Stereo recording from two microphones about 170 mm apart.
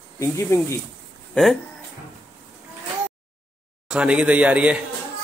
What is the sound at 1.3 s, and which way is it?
Speech, centre (ahead or behind).